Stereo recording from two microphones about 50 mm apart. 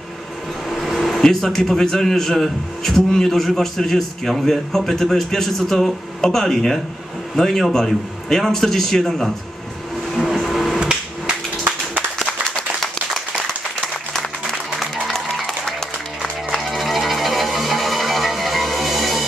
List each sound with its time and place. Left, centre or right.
0.7 s speech: centre
10.1 s vehicle: centre
10.8 s hammer: right
14.1 s applause: centre
15.0 s a sound: centre
16.5 s music: centre